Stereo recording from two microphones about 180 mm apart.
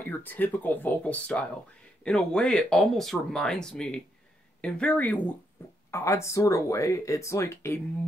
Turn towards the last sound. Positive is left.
turn(degrees=15)  # may be behind; listen again after turning